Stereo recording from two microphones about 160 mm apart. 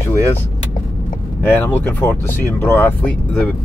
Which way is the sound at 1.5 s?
10° left (ahead or behind).